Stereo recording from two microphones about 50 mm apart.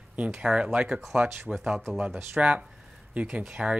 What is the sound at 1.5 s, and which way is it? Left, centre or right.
Speech, centre.